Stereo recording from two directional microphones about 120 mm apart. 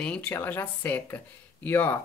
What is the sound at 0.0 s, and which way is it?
Speech, 10° left (ahead or behind).